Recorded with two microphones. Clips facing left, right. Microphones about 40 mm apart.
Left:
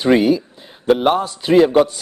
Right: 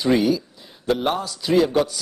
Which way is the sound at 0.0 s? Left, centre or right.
Left.